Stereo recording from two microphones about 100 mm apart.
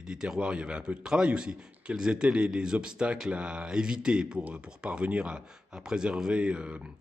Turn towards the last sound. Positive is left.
turn(degrees=-10)  # may be behind; listen again after turning